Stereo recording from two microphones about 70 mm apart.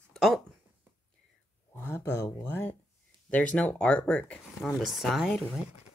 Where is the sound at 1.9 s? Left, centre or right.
Left.